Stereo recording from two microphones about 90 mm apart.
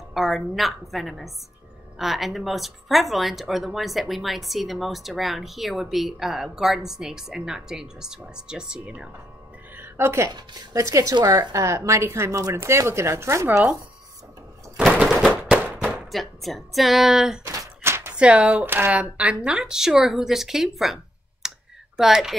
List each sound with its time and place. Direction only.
0.1 s a woman's voice: centre (ahead or behind)
9.8 s music: 25° right (ahead or behind)
10.7 s speech: 35° right (ahead or behind)
15.8 s speech: centre (ahead or behind)
17.8 s a sound: 25° right (ahead or behind)
18.1 s speech: 10° right (ahead or behind)